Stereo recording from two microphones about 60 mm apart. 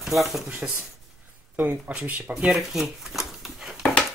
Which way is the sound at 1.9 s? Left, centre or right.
Right.